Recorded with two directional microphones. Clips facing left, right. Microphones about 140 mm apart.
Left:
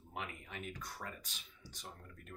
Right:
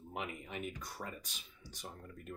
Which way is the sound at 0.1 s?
15° right (ahead or behind).